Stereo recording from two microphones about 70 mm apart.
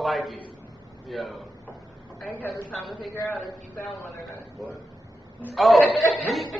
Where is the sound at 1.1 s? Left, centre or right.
Centre.